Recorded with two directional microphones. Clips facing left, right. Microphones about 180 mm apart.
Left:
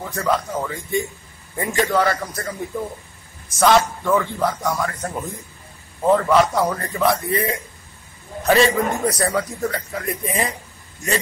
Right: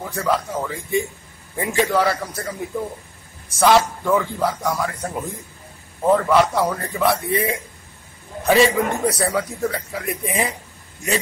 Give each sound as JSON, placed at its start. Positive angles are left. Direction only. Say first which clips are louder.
{"t": 0.1, "sound": "a man's voice", "louder": "even", "side_deg": 0}
{"t": 3.5, "sound": "a man's voice", "louder": "even", "side_deg": -10}